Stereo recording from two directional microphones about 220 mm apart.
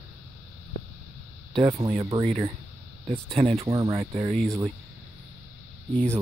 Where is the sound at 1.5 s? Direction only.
25° right (ahead or behind).